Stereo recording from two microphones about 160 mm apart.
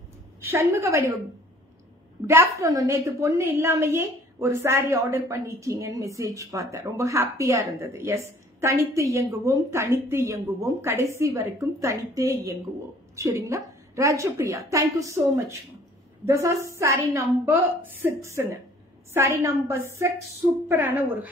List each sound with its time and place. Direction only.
0.4 s a woman's voice: 15° right (ahead or behind)
2.2 s a woman's voice: 20° right (ahead or behind)